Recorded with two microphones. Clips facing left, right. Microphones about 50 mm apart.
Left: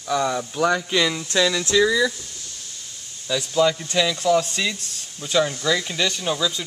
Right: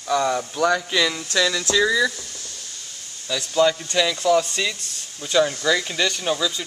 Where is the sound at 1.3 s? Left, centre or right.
Centre.